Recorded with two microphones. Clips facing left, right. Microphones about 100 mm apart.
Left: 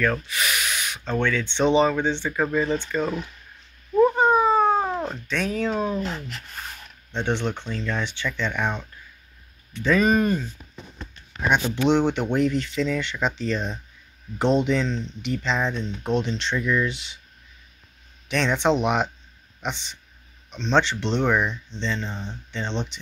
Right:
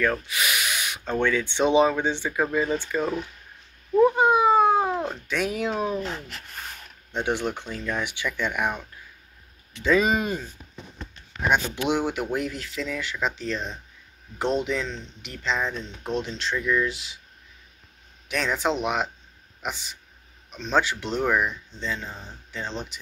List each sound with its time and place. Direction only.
0.0 s speech: 5° right (ahead or behind)
3.9 s cat: 5° right (ahead or behind)
7.1 s speech: 10° right (ahead or behind)
9.8 s speech: 15° right (ahead or behind)
11.3 s speech: centre (ahead or behind)
11.7 s speech: 10° right (ahead or behind)
18.3 s speech: 5° right (ahead or behind)